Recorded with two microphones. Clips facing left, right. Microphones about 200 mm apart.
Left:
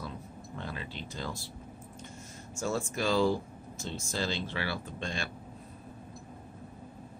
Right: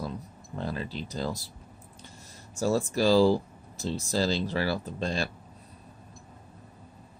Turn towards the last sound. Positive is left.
turn(degrees=-35)  # may be behind; listen again after turning